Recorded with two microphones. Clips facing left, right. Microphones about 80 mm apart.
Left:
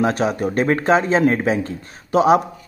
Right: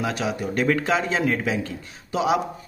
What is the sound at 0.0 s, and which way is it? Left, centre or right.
Speech, left.